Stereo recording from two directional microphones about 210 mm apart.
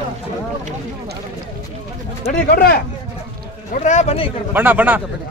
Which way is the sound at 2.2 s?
45° left (ahead or behind).